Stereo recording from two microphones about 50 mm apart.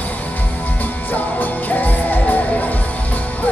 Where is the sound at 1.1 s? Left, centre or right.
Left.